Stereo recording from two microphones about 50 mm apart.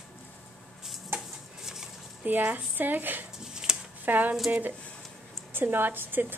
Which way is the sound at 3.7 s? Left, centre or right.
Centre.